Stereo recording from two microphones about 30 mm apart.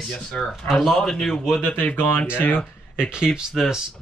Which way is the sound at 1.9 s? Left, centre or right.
Left.